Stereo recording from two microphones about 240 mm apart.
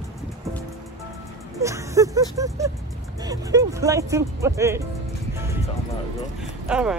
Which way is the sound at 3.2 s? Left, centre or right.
Centre.